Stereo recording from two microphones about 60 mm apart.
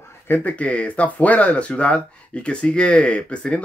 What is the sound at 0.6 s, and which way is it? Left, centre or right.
Speech, left.